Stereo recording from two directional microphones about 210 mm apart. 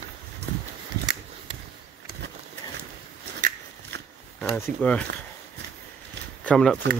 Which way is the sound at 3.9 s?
55° right (ahead or behind).